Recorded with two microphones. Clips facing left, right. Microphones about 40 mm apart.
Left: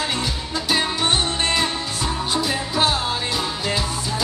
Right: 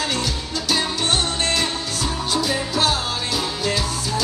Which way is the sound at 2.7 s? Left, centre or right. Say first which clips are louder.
Left 1 dB; centre.